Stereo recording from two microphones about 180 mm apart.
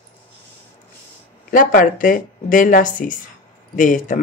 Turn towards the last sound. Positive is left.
turn(degrees=45)  # may be behind; listen again after turning